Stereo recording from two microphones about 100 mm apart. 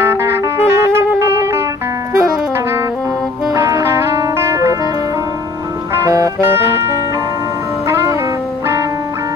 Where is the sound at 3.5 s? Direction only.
30° right (ahead or behind).